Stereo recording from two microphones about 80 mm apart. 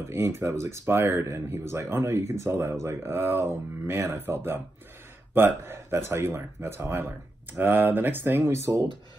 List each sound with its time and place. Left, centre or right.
0.0 s speech: right